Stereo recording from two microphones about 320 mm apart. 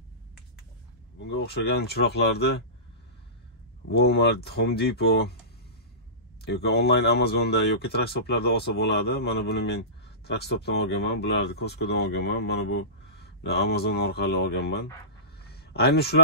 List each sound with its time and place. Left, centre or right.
1.3 s speech: left
3.9 s speech: left
6.4 s speech: left
15.4 s a sound: left